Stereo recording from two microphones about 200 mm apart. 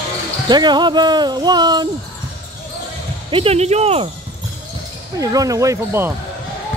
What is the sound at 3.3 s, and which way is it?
Speech, 30° right (ahead or behind).